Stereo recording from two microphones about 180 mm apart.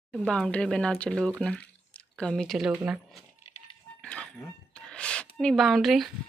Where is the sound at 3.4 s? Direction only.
35° left (ahead or behind).